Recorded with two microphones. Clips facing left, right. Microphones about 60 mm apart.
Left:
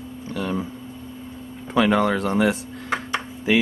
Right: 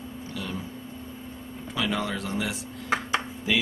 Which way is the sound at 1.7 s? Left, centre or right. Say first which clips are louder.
Left 10 dB; left.